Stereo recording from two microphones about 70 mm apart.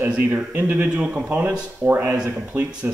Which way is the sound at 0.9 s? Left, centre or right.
Centre.